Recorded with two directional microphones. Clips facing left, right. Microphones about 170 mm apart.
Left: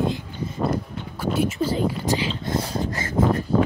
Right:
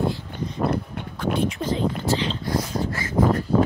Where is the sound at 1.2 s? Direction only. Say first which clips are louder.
Left 1 dB; 5° left (ahead or behind).